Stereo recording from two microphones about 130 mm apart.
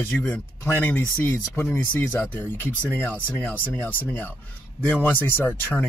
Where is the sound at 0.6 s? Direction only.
15° left (ahead or behind).